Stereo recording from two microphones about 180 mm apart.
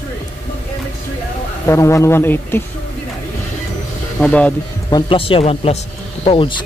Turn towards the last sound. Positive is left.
turn(degrees=30)  # may be behind; listen again after turning